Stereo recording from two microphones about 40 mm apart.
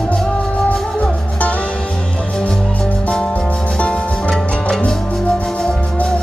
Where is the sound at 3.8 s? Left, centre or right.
Left.